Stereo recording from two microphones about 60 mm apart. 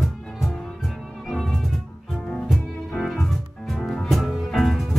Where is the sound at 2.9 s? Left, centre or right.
Centre.